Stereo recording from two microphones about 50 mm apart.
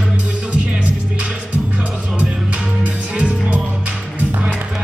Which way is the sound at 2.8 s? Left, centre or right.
Right.